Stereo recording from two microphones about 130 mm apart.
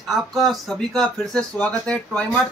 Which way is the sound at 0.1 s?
Centre (ahead or behind).